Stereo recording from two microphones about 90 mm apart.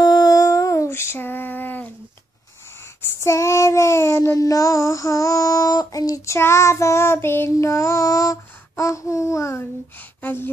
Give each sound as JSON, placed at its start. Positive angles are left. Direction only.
{"t": 0.0, "sound": "female singing", "side_deg": 50}
{"t": 3.2, "sound": "child singing", "side_deg": 35}